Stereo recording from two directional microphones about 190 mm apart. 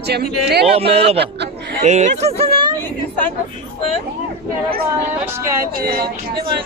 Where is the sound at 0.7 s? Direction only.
30° right (ahead or behind).